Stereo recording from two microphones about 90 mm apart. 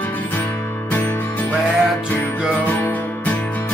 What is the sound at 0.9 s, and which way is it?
Music, 25° left (ahead or behind).